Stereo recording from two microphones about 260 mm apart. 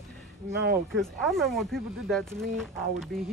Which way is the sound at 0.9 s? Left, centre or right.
Centre.